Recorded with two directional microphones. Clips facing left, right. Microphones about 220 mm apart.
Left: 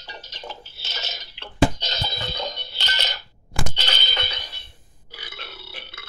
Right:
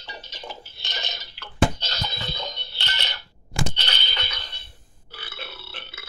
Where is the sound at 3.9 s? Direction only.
45° left (ahead or behind).